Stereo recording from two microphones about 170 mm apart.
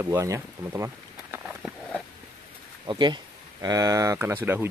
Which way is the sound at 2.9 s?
25° right (ahead or behind).